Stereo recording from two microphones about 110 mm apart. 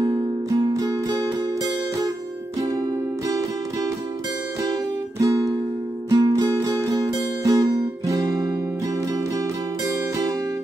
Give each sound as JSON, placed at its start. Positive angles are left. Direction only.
{"t": 0.0, "sound": "music", "side_deg": -45}
{"t": 5.2, "sound": "music", "side_deg": -30}